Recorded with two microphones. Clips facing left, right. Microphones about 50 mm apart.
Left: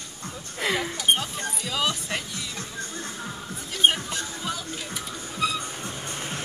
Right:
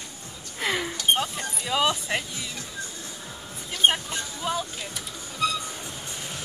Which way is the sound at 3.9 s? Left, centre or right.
Centre.